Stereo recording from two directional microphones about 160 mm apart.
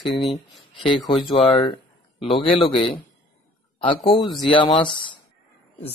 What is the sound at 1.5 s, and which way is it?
Speech, 30° left (ahead or behind).